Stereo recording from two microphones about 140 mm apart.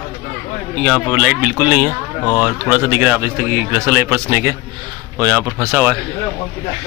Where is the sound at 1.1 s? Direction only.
10° right (ahead or behind).